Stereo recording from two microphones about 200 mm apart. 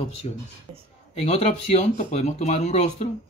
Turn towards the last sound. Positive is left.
turn(degrees=35)  # may be behind; listen again after turning